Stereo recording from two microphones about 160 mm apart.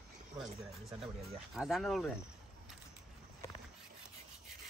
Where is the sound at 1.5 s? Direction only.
Centre (ahead or behind).